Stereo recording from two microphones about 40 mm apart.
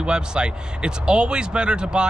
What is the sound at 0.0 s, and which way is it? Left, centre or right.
Speech, right.